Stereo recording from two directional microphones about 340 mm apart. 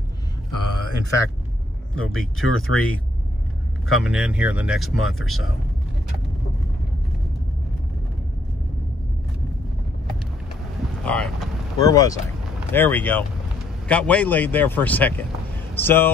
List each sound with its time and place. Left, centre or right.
0.5 s a sound: left
2.0 s speech: centre
2.5 s speech: left
4.0 s speech: centre
11.1 s speech: centre